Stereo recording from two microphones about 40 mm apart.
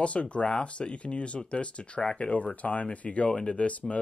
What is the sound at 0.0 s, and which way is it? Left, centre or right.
Speech, left.